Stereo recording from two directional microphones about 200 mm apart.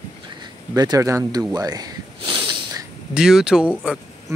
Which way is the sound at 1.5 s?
20° right (ahead or behind).